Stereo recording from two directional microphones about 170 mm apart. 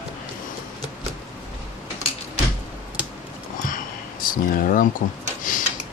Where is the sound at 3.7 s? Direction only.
55° left (ahead or behind).